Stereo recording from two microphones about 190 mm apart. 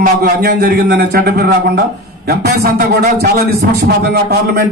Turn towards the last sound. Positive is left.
turn(degrees=-55)  # may be behind; listen again after turning